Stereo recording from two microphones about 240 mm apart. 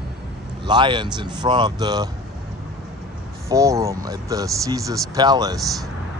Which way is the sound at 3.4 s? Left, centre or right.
Centre.